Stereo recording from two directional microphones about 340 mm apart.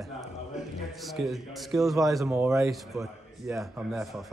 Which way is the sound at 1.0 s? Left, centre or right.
Centre.